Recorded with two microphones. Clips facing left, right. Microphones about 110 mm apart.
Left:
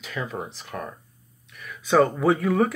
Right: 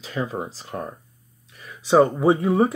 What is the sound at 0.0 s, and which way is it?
Speech, 35° right (ahead or behind).